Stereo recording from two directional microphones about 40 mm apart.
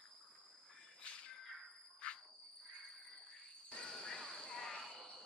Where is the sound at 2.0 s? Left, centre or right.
Left.